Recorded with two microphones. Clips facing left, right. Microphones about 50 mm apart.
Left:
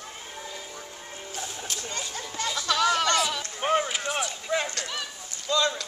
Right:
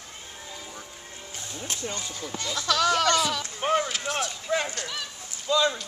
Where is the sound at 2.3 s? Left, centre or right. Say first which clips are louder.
Left 4 dB; centre.